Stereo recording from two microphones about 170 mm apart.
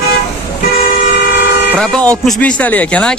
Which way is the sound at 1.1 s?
70° left (ahead or behind).